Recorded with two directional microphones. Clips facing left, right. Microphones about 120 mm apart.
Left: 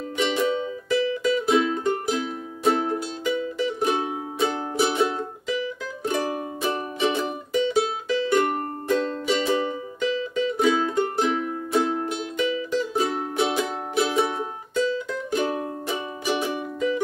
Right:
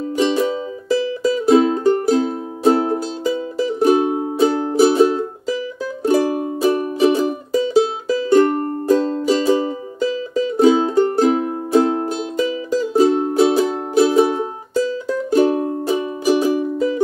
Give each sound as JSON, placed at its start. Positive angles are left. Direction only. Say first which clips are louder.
{"t": 0.2, "sound": "music", "louder": "right 5 dB", "side_deg": -35}